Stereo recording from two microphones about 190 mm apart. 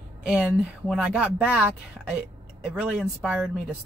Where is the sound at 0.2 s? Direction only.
5° right (ahead or behind).